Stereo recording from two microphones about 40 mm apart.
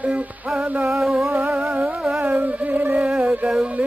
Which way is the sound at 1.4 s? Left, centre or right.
Centre.